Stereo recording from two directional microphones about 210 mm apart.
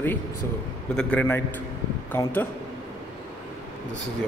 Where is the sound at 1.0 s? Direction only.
5° left (ahead or behind).